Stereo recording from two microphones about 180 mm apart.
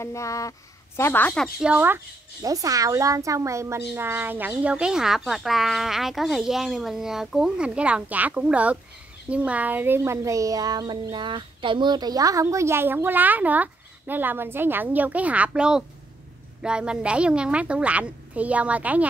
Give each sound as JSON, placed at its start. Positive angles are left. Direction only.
{"t": 0.0, "sound": "a woman's voice", "side_deg": 15}
{"t": 2.4, "sound": "speech", "side_deg": -20}